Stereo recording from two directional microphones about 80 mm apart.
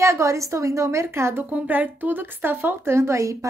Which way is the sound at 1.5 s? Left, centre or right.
Centre.